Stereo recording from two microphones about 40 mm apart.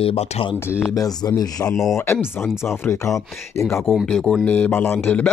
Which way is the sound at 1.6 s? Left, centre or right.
Left.